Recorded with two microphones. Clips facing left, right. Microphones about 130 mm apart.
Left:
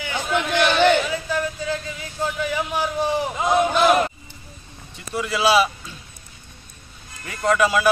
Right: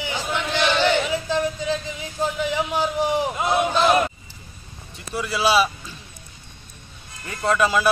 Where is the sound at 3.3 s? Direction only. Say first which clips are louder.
Left 2 dB; centre (ahead or behind).